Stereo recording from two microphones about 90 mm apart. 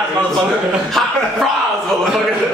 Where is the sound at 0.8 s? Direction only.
Centre (ahead or behind).